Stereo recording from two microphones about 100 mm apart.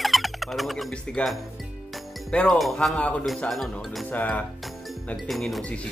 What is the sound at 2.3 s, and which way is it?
Speech, 10° left (ahead or behind).